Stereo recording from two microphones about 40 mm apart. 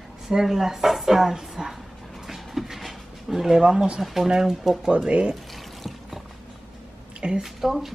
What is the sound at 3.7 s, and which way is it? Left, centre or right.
Speech, right.